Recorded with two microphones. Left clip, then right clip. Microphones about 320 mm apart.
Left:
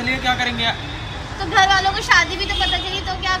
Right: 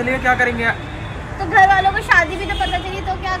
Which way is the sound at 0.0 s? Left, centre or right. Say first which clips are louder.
Right 4 dB; centre.